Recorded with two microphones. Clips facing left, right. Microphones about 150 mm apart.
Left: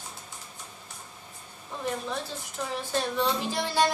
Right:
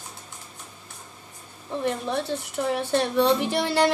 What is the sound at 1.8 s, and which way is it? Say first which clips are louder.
A woman's voice: right 5 dB; 65° right (ahead or behind).